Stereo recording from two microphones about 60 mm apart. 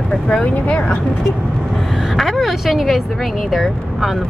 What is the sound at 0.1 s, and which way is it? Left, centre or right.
Speech, centre.